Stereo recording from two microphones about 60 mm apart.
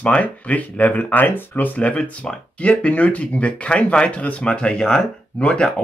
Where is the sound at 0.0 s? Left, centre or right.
Left.